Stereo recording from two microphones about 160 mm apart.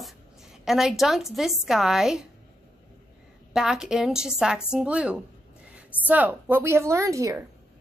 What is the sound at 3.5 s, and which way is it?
A woman's voice, 5° right (ahead or behind).